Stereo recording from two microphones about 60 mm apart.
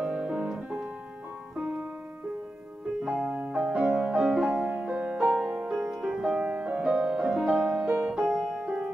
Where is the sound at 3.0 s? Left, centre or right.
Centre.